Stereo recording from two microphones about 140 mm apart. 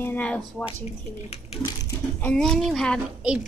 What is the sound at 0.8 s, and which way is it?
Speech, 50° left (ahead or behind).